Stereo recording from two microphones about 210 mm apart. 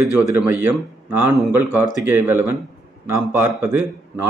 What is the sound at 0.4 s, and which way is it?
A man's voice, 10° right (ahead or behind).